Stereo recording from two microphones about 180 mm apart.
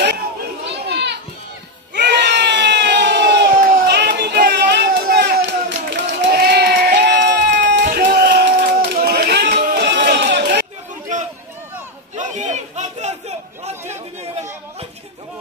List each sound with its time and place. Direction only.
0.8 s children playing: 70° right (ahead or behind)
2.0 s crowd: 70° right (ahead or behind)
3.5 s crowd: 45° right (ahead or behind)
3.8 s a sound: 65° right (ahead or behind)
6.0 s crowd: 60° right (ahead or behind)
11.1 s a sound: 45° right (ahead or behind)